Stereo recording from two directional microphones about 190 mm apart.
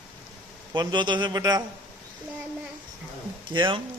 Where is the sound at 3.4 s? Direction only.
25° right (ahead or behind).